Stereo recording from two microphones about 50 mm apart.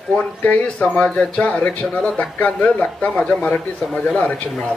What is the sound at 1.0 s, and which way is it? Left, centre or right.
Speech, centre.